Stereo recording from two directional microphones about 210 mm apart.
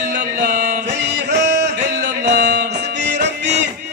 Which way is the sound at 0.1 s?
50° right (ahead or behind).